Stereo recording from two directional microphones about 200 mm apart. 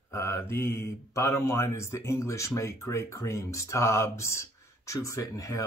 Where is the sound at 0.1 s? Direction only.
15° left (ahead or behind).